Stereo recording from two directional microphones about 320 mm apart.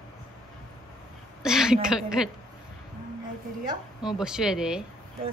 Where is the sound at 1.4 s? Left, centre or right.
Centre.